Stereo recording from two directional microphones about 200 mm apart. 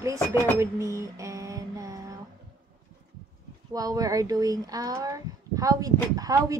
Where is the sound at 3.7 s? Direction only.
20° right (ahead or behind).